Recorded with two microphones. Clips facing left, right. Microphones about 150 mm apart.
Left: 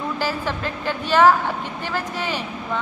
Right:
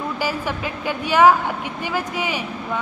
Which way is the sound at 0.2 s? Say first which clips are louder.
Right 1 dB; 10° right (ahead or behind).